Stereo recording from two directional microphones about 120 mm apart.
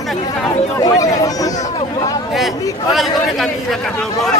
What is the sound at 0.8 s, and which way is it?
Speech, 30° left (ahead or behind).